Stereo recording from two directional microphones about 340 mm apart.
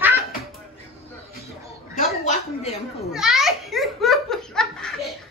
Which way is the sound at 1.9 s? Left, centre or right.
Left.